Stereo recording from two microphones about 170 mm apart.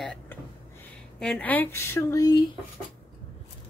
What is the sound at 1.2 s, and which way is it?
Speech, 5° left (ahead or behind).